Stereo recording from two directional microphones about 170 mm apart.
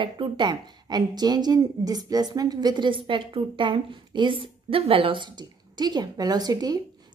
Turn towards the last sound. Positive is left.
turn(degrees=-25)  # may be behind; listen again after turning